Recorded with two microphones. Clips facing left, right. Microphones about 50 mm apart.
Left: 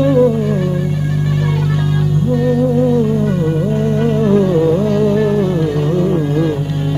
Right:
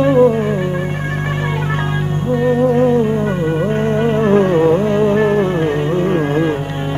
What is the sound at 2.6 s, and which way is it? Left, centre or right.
Music, right.